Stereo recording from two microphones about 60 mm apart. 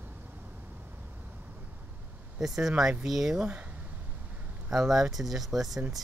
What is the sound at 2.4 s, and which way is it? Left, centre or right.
Speech, centre.